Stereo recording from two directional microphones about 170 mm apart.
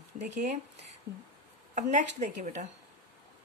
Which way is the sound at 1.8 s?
45° right (ahead or behind).